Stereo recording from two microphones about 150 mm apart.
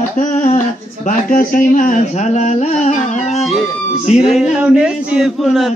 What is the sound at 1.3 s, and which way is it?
Speech, 60° left (ahead or behind).